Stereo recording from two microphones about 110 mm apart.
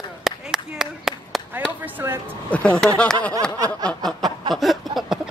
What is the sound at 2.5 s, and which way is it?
Speech, 10° left (ahead or behind).